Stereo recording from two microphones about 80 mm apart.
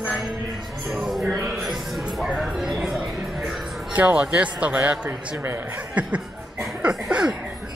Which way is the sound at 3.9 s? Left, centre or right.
Centre.